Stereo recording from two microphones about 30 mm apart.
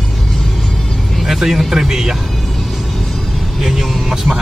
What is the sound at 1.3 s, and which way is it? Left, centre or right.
Speech, centre.